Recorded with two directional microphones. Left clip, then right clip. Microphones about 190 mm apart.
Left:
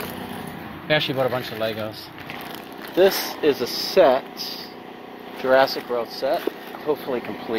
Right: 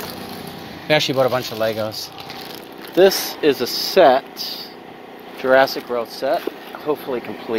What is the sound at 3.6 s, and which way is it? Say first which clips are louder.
Speech: right 4 dB; 30° right (ahead or behind).